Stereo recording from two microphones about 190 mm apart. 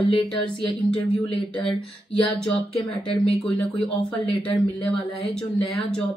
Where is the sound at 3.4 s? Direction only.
25° left (ahead or behind).